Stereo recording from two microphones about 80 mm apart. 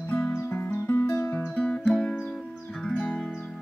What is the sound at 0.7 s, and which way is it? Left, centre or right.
Music, left.